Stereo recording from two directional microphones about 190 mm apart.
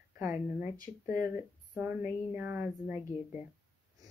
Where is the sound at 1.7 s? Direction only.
10° right (ahead or behind).